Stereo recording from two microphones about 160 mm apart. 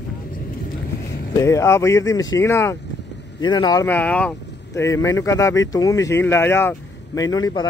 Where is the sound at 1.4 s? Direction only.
20° left (ahead or behind).